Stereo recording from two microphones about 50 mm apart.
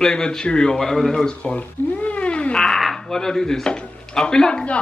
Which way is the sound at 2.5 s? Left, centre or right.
Centre.